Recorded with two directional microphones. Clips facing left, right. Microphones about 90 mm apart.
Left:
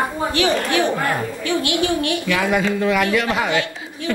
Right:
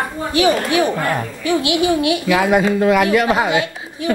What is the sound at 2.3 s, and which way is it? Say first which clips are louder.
Speech: right 5 dB; 40° right (ahead or behind).